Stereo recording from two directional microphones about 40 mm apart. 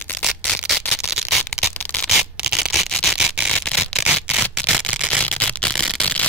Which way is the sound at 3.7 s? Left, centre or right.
Left.